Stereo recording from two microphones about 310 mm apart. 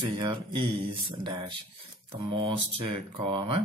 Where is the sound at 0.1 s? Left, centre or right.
Centre.